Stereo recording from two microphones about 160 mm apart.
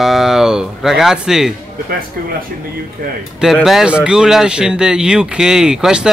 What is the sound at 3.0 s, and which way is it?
Speech, 65° right (ahead or behind).